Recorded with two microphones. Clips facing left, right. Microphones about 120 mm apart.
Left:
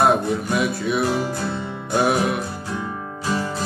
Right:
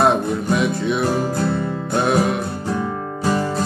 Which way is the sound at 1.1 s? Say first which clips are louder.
Right 3 dB; 45° right (ahead or behind).